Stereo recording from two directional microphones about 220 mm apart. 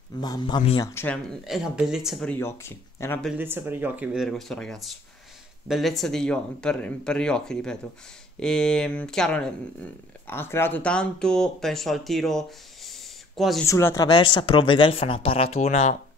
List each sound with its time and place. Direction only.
0.2 s speech: 20° left (ahead or behind)
1.0 s speech: centre (ahead or behind)
3.3 s speech: 10° right (ahead or behind)
13.7 s speech: 15° left (ahead or behind); by 16.0 s 30° left (ahead or behind)